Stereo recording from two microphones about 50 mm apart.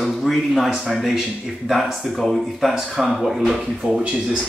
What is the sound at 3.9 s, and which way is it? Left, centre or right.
Speech, right.